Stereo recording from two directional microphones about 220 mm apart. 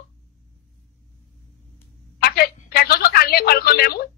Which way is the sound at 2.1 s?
45° left (ahead or behind).